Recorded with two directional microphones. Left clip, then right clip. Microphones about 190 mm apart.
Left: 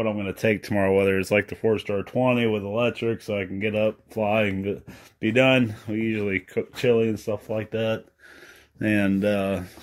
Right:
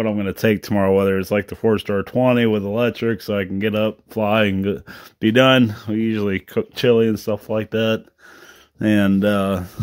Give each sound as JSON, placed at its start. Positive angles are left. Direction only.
{"t": 0.0, "sound": "speech", "side_deg": -50}
{"t": 1.7, "sound": "speech", "side_deg": -50}
{"t": 8.8, "sound": "speech", "side_deg": -35}